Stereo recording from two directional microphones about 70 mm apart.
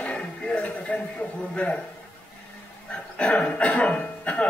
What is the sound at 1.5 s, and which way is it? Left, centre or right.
Speech, centre.